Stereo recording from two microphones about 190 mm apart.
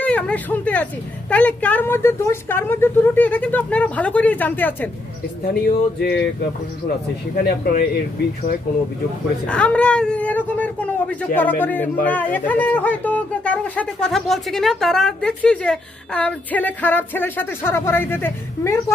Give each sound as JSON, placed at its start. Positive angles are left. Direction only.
{"t": 0.0, "sound": "a man's voice", "side_deg": 5}
{"t": 5.5, "sound": "music", "side_deg": 60}
{"t": 7.3, "sound": "speech", "side_deg": 55}
{"t": 9.5, "sound": "a man's voice", "side_deg": 5}